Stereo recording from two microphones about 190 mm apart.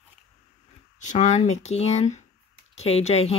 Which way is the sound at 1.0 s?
40° left (ahead or behind).